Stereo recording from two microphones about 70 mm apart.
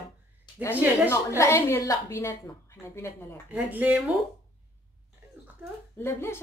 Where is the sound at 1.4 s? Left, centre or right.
Left.